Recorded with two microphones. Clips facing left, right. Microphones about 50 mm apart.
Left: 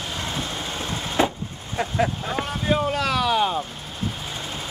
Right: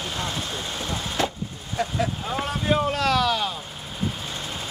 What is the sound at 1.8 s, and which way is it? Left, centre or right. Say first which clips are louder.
Speech: even; left.